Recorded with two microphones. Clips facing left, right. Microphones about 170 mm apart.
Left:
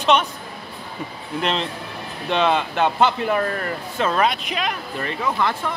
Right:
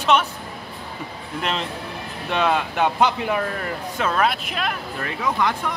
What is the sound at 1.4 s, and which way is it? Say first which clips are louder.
Speech: left 2 dB; 5° right (ahead or behind).